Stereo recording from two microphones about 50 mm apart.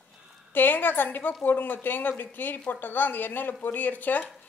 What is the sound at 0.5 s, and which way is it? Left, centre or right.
A woman's voice, left.